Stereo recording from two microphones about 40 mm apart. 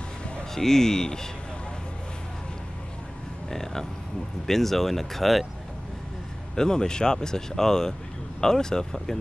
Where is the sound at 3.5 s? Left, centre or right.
Centre.